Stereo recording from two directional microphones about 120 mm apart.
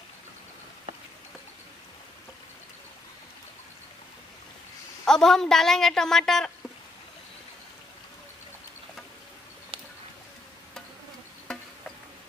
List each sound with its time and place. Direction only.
5.0 s a woman's voice: 5° left (ahead or behind)
9.7 s a sound: 45° right (ahead or behind)
11.5 s insect: 5° left (ahead or behind)